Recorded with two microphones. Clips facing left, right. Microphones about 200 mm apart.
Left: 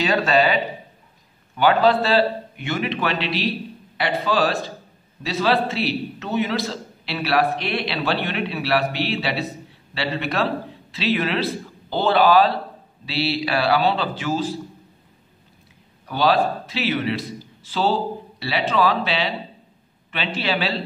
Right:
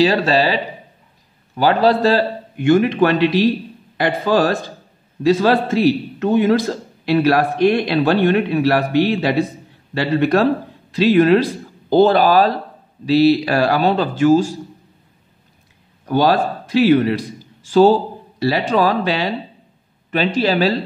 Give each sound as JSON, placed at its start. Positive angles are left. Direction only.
{"t": 0.0, "sound": "a man's voice", "side_deg": -30}
{"t": 16.1, "sound": "a man's voice", "side_deg": -45}